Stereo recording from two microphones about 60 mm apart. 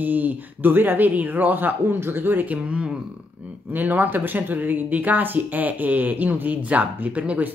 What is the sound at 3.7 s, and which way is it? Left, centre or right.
Speech, right.